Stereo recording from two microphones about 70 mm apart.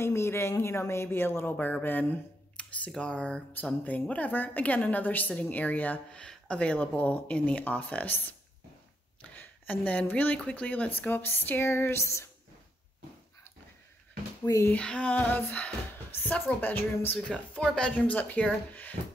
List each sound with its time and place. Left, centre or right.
0.0 s speech: left
2.9 s female singing: centre
3.8 s speech: left
14.4 s speech: left
14.8 s female singing: centre
16.1 s a sound: left
16.4 s speech: left
17.3 s female singing: centre
17.9 s speech: left